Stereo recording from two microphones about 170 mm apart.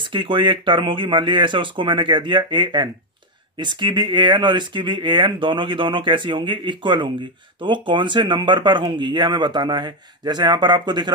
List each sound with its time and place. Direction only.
0.0 s speech: 30° right (ahead or behind)